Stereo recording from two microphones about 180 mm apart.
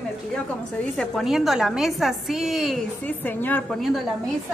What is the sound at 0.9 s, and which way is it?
A woman's voice, centre (ahead or behind).